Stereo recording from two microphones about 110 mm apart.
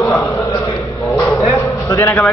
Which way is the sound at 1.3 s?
30° left (ahead or behind).